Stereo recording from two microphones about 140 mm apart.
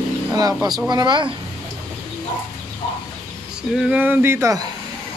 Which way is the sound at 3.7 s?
10° right (ahead or behind).